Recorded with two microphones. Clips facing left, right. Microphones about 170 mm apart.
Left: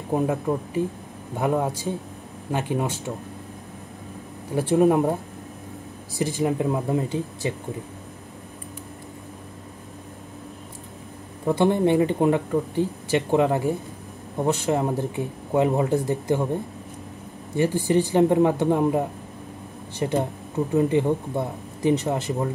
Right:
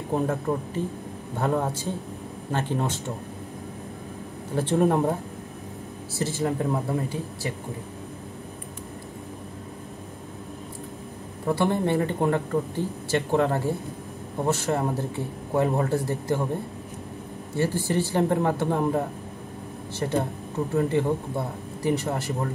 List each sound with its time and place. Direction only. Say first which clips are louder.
0.1 s speech: left 2 dB; 15° left (ahead or behind)
4.6 s speech: left 3 dB; 10° left (ahead or behind)
6.1 s speech: left 3 dB; 15° left (ahead or behind)
11.4 s speech: left 4 dB; 20° left (ahead or behind)
17.6 s speech: left 4 dB; 15° left (ahead or behind)